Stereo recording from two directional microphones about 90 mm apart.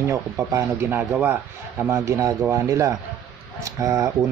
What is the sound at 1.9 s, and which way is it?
Speech, 35° right (ahead or behind).